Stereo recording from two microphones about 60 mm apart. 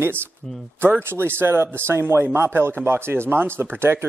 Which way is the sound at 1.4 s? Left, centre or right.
Right.